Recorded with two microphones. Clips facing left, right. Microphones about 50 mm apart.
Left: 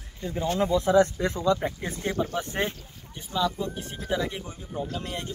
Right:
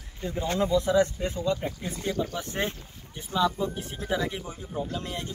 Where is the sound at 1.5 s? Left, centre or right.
Left.